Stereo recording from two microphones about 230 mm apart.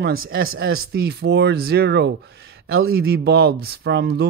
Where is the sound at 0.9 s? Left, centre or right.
Right.